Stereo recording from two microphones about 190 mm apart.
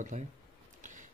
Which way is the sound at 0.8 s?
40° right (ahead or behind).